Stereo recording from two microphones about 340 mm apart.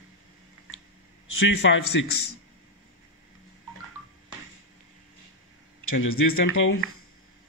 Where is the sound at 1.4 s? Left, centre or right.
Left.